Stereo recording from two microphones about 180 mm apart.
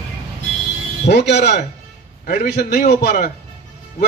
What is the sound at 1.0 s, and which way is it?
Speech, 70° left (ahead or behind).